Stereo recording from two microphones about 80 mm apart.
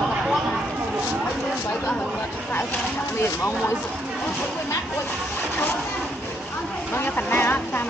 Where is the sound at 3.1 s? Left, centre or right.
Left.